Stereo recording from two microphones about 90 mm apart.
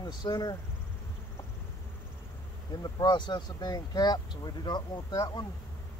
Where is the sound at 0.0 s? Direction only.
55° left (ahead or behind).